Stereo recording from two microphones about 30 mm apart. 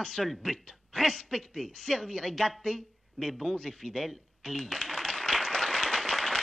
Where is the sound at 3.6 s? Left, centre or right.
Centre.